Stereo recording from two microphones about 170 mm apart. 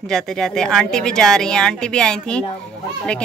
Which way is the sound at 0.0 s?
Centre (ahead or behind).